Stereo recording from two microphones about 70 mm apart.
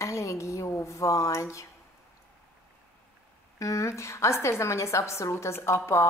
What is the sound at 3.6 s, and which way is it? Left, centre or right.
A woman's voice, left.